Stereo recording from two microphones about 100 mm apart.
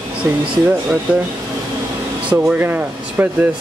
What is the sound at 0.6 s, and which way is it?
Speech, 10° right (ahead or behind).